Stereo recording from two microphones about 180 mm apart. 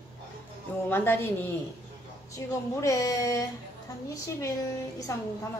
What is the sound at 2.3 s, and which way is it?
A woman's voice, 15° left (ahead or behind).